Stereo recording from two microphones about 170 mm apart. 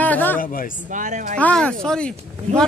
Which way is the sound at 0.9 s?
50° right (ahead or behind).